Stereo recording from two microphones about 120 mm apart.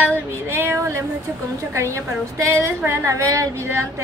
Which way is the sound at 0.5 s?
20° right (ahead or behind).